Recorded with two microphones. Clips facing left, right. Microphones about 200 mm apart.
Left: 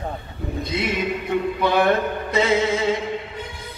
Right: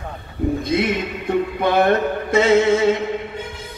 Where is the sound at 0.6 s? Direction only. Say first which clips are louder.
Right 3 dB; 50° right (ahead or behind).